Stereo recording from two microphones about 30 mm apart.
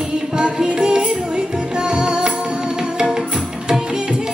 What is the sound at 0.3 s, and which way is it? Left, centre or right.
Music, right.